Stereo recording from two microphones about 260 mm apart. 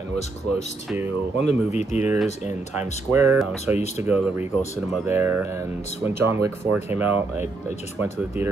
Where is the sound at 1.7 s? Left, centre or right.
Left.